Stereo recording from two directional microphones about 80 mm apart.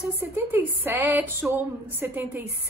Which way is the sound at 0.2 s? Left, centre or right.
Right.